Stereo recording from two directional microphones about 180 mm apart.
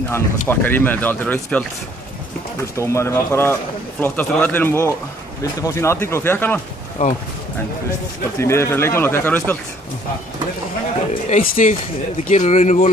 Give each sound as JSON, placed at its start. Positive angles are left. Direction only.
{"t": 0.1, "sound": "speech", "side_deg": 10}
{"t": 2.7, "sound": "speech", "side_deg": 15}
{"t": 7.0, "sound": "speech", "side_deg": 50}
{"t": 8.4, "sound": "speech", "side_deg": 15}
{"t": 11.2, "sound": "speech", "side_deg": 45}